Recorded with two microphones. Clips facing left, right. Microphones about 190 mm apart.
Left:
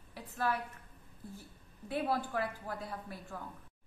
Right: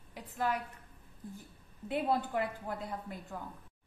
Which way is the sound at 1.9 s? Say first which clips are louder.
Right 2 dB; 20° right (ahead or behind).